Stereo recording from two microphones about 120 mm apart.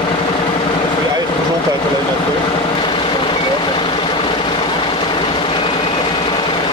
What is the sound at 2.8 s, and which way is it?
Vehicle, 45° left (ahead or behind).